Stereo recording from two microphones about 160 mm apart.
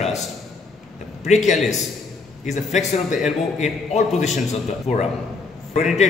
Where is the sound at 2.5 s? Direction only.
45° left (ahead or behind).